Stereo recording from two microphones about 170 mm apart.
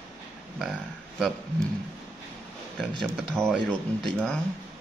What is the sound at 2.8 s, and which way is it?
Speech, centre (ahead or behind).